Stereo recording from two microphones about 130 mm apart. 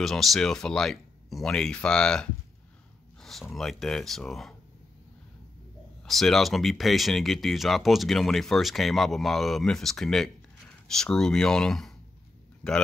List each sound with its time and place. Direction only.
0.0 s speech: centre (ahead or behind)
3.2 s a sound: centre (ahead or behind)
3.5 s speech: centre (ahead or behind)
6.0 s speech: centre (ahead or behind)